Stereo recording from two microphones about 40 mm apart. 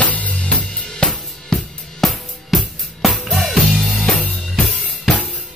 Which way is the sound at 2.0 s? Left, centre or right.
Centre.